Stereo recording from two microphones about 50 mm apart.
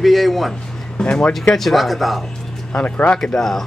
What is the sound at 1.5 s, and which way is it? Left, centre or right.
Speech, centre.